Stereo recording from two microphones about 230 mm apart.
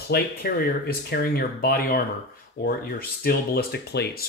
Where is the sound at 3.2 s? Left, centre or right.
Left.